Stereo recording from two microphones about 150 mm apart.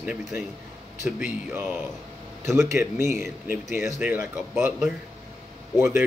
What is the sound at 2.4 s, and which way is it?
Speech, 15° right (ahead or behind).